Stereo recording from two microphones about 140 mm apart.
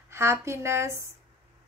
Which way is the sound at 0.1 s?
20° right (ahead or behind).